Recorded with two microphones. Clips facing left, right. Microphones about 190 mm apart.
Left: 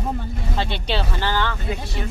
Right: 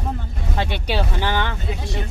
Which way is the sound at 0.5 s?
15° right (ahead or behind).